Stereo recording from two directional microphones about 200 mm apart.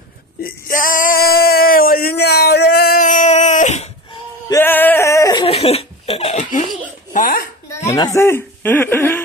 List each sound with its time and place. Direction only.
0.4 s male singing: 45° left (ahead or behind)
4.5 s laughter: 10° left (ahead or behind); by 6.6 s 35° left (ahead or behind)
7.2 s a sound: 45° left (ahead or behind)
7.9 s speech: 15° left (ahead or behind)